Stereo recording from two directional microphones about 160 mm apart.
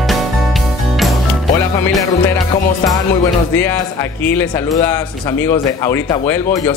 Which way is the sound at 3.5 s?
15° left (ahead or behind).